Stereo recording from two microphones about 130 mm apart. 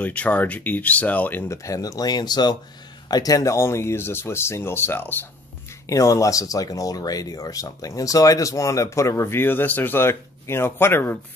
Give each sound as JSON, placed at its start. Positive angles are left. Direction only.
{"t": 0.0, "sound": "speech", "side_deg": 10}